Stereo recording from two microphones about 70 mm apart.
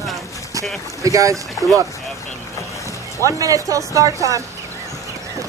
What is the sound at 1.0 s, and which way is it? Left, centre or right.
Boat, right.